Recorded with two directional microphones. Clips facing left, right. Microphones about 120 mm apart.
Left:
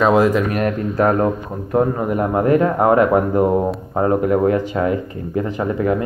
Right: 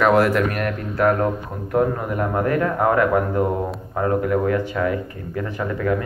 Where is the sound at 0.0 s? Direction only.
15° left (ahead or behind).